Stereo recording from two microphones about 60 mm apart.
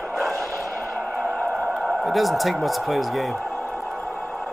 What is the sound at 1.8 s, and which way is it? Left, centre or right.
A man's voice, centre.